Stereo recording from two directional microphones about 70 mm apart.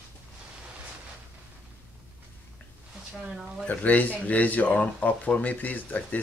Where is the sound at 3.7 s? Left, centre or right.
Left.